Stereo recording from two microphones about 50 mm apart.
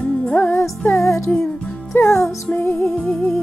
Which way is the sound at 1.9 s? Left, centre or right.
Left.